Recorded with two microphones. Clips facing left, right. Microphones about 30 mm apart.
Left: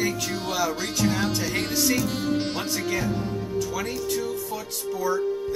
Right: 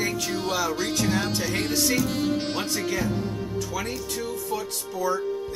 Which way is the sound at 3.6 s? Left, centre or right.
Centre.